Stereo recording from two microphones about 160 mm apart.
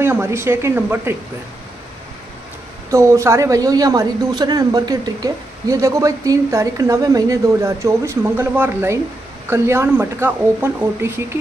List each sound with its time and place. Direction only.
0.0 s speech: 15° right (ahead or behind)
2.9 s a man's voice: 20° right (ahead or behind)